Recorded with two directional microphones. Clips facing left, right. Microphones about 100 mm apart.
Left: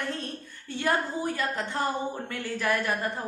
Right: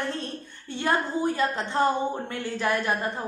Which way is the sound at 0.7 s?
25° right (ahead or behind).